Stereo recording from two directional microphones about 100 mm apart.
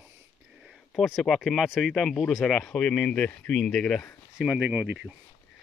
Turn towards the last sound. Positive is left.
turn(degrees=-15)  # may be behind; listen again after turning